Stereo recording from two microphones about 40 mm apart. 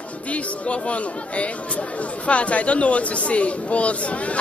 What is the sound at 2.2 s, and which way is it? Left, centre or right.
A man's voice, left.